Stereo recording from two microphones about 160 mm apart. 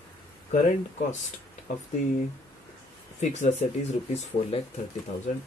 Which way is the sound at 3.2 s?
45° left (ahead or behind).